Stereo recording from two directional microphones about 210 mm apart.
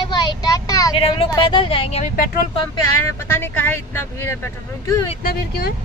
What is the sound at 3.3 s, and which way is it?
Speech, 10° left (ahead or behind).